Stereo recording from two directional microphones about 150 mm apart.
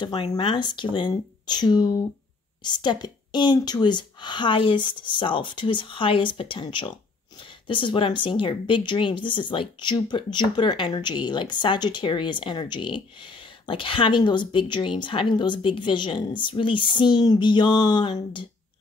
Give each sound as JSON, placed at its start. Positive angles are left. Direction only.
{"t": 0.0, "sound": "speech", "side_deg": 30}